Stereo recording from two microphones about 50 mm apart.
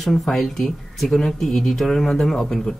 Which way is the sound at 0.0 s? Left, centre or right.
Centre.